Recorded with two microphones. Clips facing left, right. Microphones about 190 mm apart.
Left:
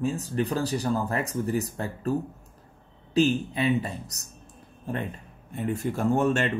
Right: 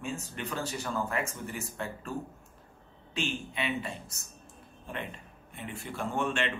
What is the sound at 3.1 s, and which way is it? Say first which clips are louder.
A man's voice: left 12 dB; 35° left (ahead or behind).